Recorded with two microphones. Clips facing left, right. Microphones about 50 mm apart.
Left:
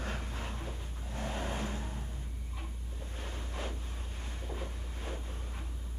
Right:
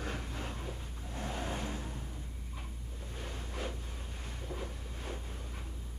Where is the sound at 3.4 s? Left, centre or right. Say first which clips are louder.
Right 1 dB; centre.